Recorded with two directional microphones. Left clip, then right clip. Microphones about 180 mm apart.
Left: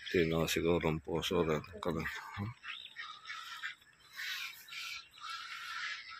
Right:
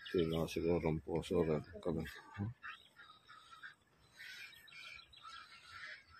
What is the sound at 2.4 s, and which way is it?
Speech, 15° left (ahead or behind).